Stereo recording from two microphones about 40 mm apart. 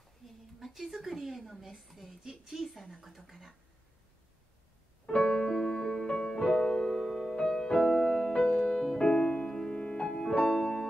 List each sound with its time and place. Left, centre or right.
0.7 s a woman's voice: centre
5.0 s music: centre
7.0 s music: centre